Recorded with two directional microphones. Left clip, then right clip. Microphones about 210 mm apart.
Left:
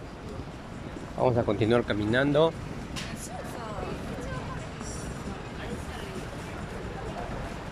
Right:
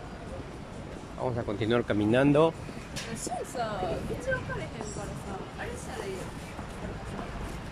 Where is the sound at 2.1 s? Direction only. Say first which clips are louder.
Even; 10° right (ahead or behind).